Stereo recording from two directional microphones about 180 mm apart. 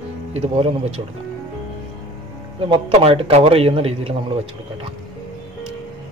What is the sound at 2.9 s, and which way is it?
A man's voice, 30° right (ahead or behind).